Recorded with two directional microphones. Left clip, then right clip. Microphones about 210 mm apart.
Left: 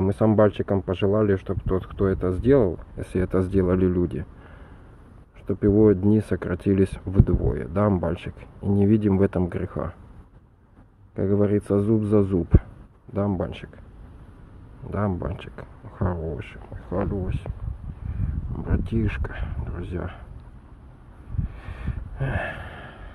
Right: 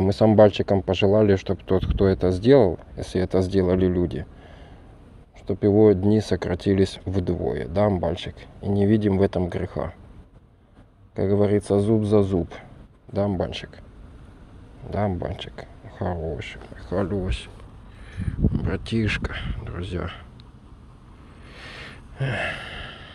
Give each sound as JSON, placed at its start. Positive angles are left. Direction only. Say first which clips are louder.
{"t": 0.0, "sound": "speech", "louder": "right 4 dB", "side_deg": 0}
{"t": 5.5, "sound": "speech", "louder": "right 1 dB", "side_deg": 15}
{"t": 11.1, "sound": "speech", "louder": "right 2 dB", "side_deg": 15}
{"t": 14.9, "sound": "speech", "louder": "right 2 dB", "side_deg": 10}
{"t": 16.9, "sound": "speech", "louder": "right 2 dB", "side_deg": -5}
{"t": 18.6, "sound": "speech", "louder": "left 3 dB", "side_deg": 0}
{"t": 21.5, "sound": "gasp", "louder": "right 3 dB", "side_deg": -5}